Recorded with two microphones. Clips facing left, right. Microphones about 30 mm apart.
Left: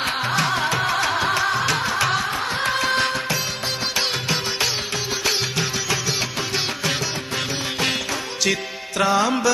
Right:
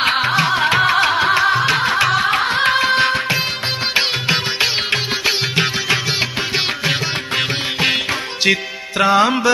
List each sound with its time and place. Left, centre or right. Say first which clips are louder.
0.0 s music: right 6 dB; right
2.2 s music: right 7 dB; right
2.8 s music: right 6 dB; right
6.9 s music: right 5 dB; right